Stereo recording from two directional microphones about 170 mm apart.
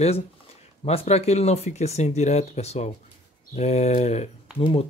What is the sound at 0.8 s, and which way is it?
Speech, 40° left (ahead or behind).